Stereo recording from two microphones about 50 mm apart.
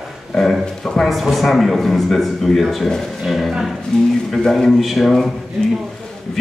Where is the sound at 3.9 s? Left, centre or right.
Centre.